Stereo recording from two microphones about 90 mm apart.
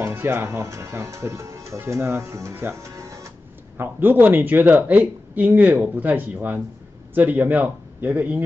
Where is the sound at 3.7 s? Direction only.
25° right (ahead or behind).